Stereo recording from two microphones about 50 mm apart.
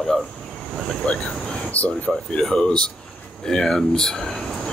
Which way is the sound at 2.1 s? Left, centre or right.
Centre.